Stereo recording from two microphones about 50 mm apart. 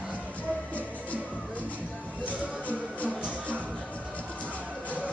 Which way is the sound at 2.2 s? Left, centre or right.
Left.